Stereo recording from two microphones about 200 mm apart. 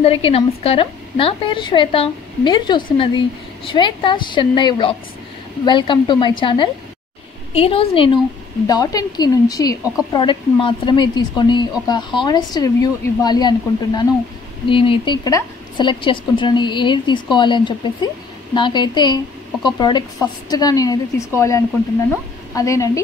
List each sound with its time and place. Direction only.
0.0 s a woman's voice: 30° left (ahead or behind)